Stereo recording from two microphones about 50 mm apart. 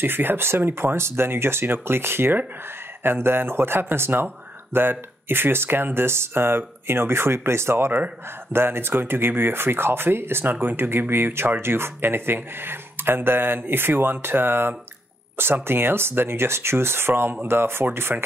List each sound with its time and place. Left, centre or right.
0.0 s speech: right
18.1 s speech: right